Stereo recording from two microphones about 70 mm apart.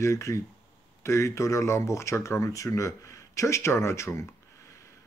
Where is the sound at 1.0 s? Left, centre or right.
Left.